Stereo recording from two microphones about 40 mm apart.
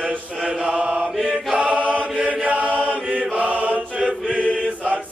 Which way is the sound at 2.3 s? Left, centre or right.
Right.